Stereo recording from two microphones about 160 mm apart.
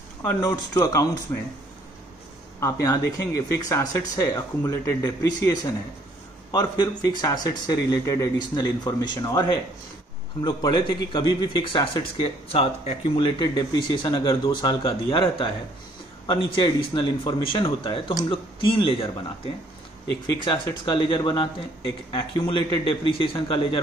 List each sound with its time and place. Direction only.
0.2 s speech: 20° left (ahead or behind)
2.6 s speech: 20° left (ahead or behind)